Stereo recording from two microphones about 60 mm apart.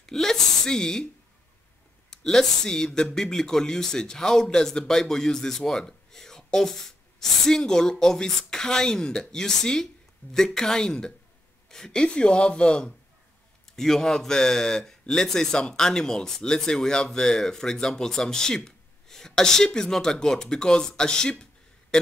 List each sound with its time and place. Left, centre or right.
0.0 s speech: centre
2.0 s speech: centre
21.9 s a sound: centre